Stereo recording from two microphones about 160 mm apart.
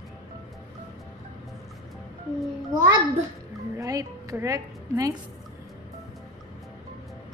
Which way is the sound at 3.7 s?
20° right (ahead or behind).